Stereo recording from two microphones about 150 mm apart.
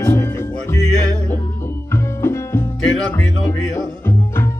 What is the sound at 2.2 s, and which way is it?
Music, 15° left (ahead or behind).